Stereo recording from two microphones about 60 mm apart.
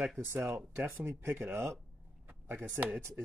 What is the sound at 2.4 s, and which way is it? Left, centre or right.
Speech, right.